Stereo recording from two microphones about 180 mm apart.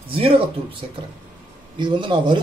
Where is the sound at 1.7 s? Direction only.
25° right (ahead or behind).